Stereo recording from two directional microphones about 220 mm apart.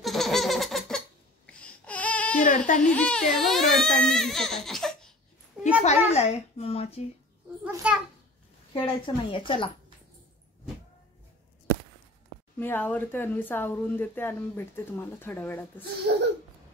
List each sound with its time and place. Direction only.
0.0 s laughter: centre (ahead or behind)
2.4 s speech: 35° left (ahead or behind)
2.9 s speech: 5° left (ahead or behind)
5.5 s a sound: centre (ahead or behind)
5.9 s a child's voice: 30° left (ahead or behind)
7.6 s speech: 5° right (ahead or behind)
8.7 s a child's voice: 25° left (ahead or behind)
12.5 s speech: 10° left (ahead or behind)